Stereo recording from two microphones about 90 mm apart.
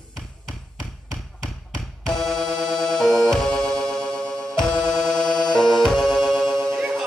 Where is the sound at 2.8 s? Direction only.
5° left (ahead or behind).